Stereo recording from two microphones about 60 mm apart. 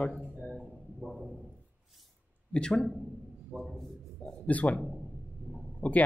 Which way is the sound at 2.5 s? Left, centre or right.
Centre.